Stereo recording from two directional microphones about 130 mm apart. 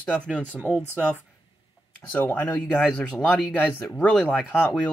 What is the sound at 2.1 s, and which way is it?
Speech, 15° left (ahead or behind).